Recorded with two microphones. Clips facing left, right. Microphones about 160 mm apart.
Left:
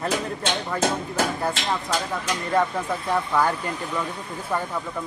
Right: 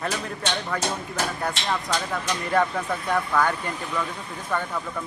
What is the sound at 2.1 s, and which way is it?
Speech, 5° left (ahead or behind).